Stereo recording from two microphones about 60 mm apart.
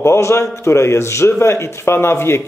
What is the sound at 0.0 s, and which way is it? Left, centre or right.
A man's voice, left.